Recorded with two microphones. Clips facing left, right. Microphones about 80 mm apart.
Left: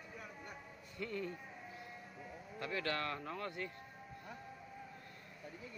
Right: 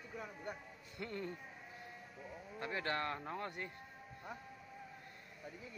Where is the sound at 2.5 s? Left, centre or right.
Right.